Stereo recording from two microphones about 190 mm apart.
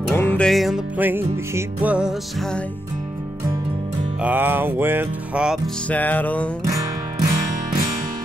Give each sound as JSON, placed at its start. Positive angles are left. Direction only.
{"t": 0.1, "sound": "music", "side_deg": 10}
{"t": 4.2, "sound": "music", "side_deg": -10}
{"t": 5.9, "sound": "music", "side_deg": 10}
{"t": 6.6, "sound": "music", "side_deg": -20}